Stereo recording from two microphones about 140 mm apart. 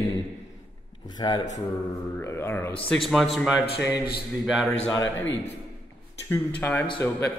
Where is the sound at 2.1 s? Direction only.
15° left (ahead or behind).